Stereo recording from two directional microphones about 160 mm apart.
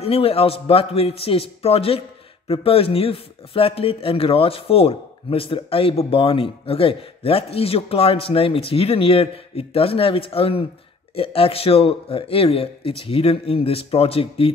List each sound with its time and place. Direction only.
0.0 s a man's voice: 40° left (ahead or behind)